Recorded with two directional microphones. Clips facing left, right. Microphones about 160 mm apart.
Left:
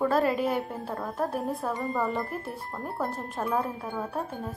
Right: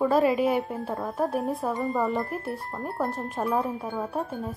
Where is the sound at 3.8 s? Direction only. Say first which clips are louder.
Right 2 dB; 15° right (ahead or behind).